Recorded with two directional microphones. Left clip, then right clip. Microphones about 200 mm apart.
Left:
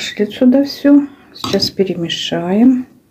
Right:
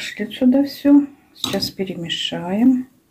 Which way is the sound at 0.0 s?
15° left (ahead or behind).